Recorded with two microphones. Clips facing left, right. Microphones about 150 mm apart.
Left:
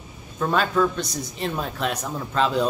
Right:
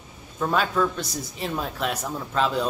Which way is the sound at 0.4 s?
5° right (ahead or behind).